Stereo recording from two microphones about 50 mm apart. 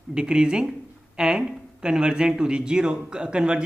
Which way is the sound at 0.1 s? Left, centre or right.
Centre.